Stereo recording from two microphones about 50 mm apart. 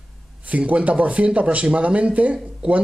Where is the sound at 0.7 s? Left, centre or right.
Right.